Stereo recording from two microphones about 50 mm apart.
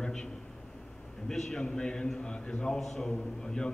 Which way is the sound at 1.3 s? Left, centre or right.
Centre.